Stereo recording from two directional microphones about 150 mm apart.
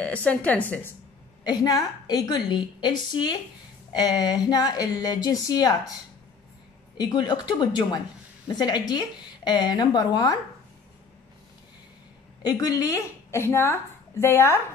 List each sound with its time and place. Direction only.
0.0 s a woman's voice: 10° left (ahead or behind)
1.4 s a woman's voice: 25° left (ahead or behind)
7.0 s a woman's voice: 30° left (ahead or behind)
8.5 s a woman's voice: 30° left (ahead or behind)
12.4 s a woman's voice: 25° left (ahead or behind)